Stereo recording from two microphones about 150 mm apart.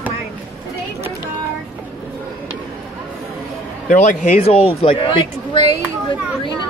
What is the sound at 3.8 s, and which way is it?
Speech, 55° left (ahead or behind).